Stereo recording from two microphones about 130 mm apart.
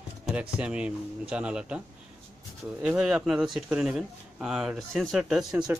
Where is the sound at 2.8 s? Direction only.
5° right (ahead or behind).